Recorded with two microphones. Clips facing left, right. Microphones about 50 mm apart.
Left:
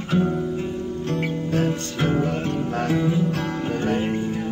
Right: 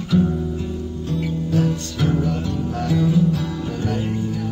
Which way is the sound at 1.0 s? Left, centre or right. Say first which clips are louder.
Right 2 dB; left.